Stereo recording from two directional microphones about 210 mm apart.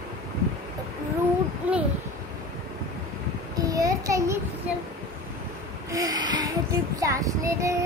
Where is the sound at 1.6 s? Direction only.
5° right (ahead or behind).